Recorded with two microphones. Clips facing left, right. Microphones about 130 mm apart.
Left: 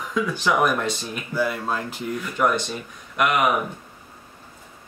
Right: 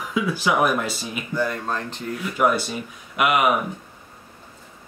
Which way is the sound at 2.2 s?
5° right (ahead or behind).